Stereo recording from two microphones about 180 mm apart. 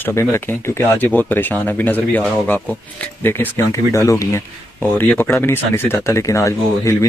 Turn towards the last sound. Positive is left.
turn(degrees=15)  # may be behind; listen again after turning